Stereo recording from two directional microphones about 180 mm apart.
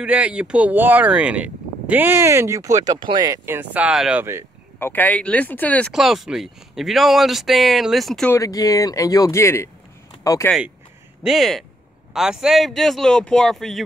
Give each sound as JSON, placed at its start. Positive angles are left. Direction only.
{"t": 0.0, "sound": "speech", "side_deg": -5}
{"t": 4.7, "sound": "speech", "side_deg": 10}
{"t": 8.3, "sound": "speech", "side_deg": 20}
{"t": 11.2, "sound": "speech", "side_deg": 0}